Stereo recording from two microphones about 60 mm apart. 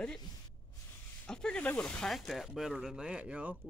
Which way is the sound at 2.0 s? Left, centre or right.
Centre.